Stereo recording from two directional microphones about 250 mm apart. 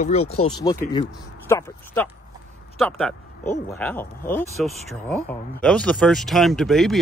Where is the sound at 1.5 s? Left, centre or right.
Centre.